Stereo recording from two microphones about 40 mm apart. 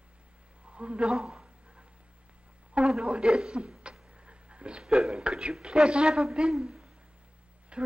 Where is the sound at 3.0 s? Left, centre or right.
Right.